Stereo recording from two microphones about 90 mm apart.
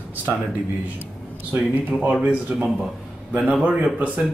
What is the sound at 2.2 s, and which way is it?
Speech, 15° right (ahead or behind).